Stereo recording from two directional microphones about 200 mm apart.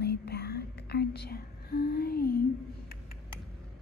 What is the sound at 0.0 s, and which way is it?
Whispering, 55° left (ahead or behind).